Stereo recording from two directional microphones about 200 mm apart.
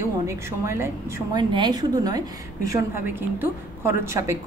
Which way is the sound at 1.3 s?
20° right (ahead or behind).